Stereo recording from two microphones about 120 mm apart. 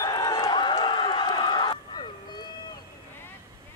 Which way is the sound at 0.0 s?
35° left (ahead or behind).